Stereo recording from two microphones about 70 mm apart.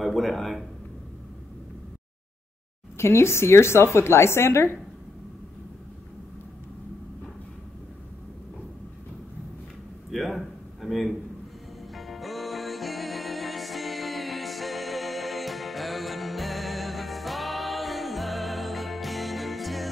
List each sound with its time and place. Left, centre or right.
0.0 s speech: centre
3.0 s a woman's voice: left
10.1 s a sound: centre
11.9 s music: centre